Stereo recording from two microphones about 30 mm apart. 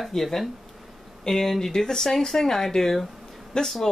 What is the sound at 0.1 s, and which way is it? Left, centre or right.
Speech, centre.